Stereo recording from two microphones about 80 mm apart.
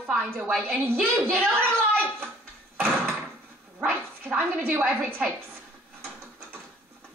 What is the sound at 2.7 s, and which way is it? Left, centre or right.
Door, right.